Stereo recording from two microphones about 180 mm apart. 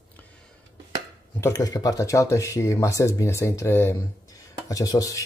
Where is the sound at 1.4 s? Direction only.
20° left (ahead or behind).